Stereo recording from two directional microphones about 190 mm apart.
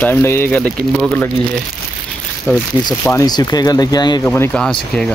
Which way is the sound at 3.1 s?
20° left (ahead or behind).